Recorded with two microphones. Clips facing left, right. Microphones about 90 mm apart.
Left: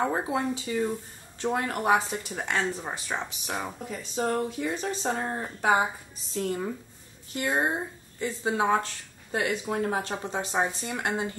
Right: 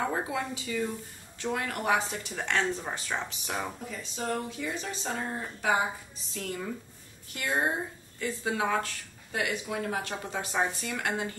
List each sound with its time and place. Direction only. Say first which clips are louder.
0.0 s speech: left 4 dB; 25° left (ahead or behind)
3.9 s speech: left 7 dB; 35° left (ahead or behind)